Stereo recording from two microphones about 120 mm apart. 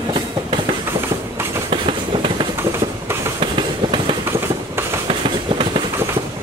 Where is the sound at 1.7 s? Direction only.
45° right (ahead or behind).